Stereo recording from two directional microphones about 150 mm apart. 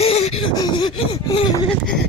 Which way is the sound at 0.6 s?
30° left (ahead or behind).